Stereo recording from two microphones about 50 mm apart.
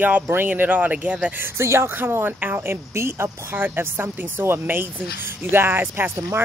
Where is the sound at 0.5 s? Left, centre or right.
Right.